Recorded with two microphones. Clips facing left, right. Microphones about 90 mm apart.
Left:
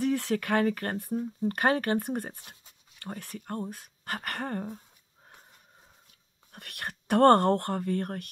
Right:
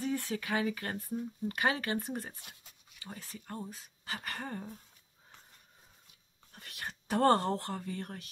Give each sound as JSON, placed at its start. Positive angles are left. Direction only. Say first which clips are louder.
{"t": 0.0, "sound": "a sound", "louder": "left 7 dB", "side_deg": 80}
{"t": 0.4, "sound": "speech", "louder": "left 7 dB", "side_deg": 55}
{"t": 1.1, "sound": "speech", "louder": "left 7 dB", "side_deg": 45}
{"t": 6.5, "sound": "speech", "louder": "left 5 dB", "side_deg": 65}